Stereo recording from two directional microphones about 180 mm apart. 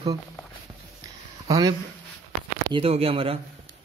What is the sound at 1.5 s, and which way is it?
Speech, 20° right (ahead or behind).